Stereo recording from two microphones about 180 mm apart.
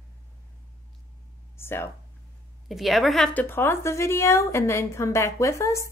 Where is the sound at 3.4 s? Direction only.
10° left (ahead or behind).